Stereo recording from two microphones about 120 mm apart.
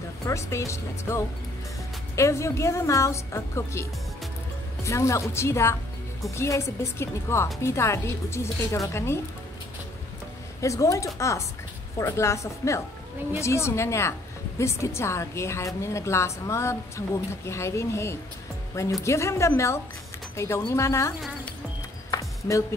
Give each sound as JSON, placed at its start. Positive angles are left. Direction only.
{"t": 0.3, "sound": "a woman's voice", "side_deg": 25}
{"t": 4.8, "sound": "a woman's voice", "side_deg": 25}
{"t": 10.6, "sound": "a woman's voice", "side_deg": 25}
{"t": 22.1, "sound": "a sound", "side_deg": 25}